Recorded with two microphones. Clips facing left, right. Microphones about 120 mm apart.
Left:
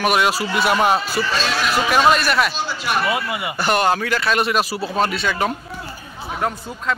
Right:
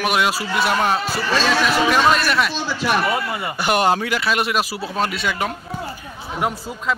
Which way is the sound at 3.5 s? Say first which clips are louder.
Even; 15° right (ahead or behind).